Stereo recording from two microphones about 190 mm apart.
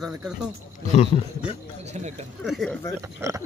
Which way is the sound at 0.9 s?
35° left (ahead or behind).